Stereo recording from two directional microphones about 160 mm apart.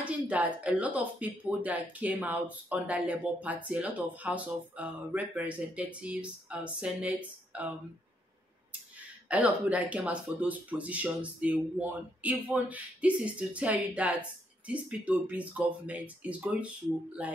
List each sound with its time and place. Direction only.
0.0 s speech: 10° right (ahead or behind)
9.3 s speech: 10° right (ahead or behind)